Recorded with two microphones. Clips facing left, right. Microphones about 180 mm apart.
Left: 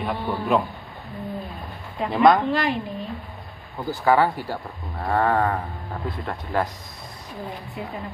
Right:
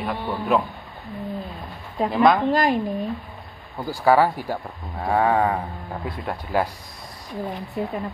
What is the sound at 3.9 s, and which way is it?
Speech, 10° right (ahead or behind).